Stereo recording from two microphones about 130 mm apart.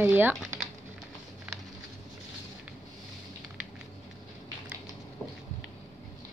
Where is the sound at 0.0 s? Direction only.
15° right (ahead or behind).